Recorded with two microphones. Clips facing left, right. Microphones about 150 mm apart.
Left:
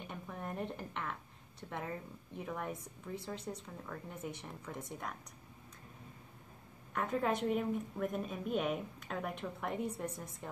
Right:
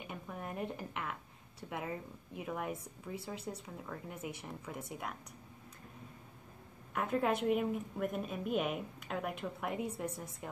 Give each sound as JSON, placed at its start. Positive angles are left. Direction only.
{"t": 0.0, "sound": "a sound", "side_deg": -5}
{"t": 1.6, "sound": "a woman's voice", "side_deg": -5}
{"t": 6.9, "sound": "a woman's voice", "side_deg": -5}